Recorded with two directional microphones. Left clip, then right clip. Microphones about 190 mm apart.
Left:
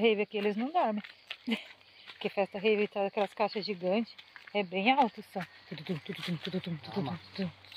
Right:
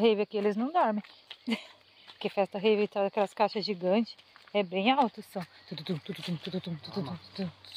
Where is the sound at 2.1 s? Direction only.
15° right (ahead or behind).